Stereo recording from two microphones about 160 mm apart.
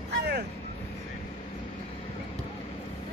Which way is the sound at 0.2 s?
90° right.